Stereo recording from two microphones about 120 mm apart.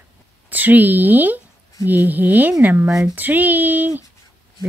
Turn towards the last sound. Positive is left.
turn(degrees=-15)  # may be behind; listen again after turning